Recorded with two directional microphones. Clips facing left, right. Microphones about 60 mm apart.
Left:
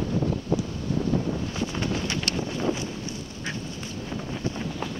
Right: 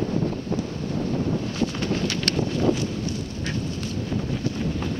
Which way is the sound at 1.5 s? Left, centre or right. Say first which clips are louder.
Right 3 dB; left.